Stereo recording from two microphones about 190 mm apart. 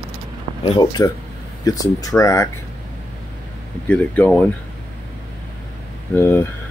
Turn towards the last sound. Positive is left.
turn(degrees=10)  # may be behind; listen again after turning